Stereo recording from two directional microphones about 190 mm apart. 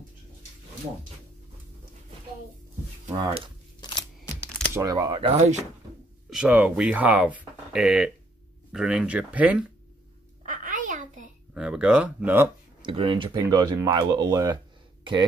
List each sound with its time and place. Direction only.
3.2 s speech: 25° right (ahead or behind)
3.8 s camera: 20° left (ahead or behind)
4.7 s speech: 20° right (ahead or behind)
6.3 s speech: 5° right (ahead or behind)
10.4 s a sound: 45° right (ahead or behind)
11.5 s speech: 5° right (ahead or behind)
12.8 s speech: 25° right (ahead or behind)